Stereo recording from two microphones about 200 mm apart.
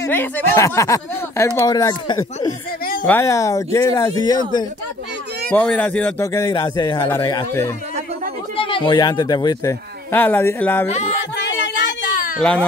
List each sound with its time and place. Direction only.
0.0 s speech: 10° left (ahead or behind)
5.5 s speech: 5° left (ahead or behind)
11.4 s a sound: 60° left (ahead or behind)
12.4 s speech: 5° left (ahead or behind)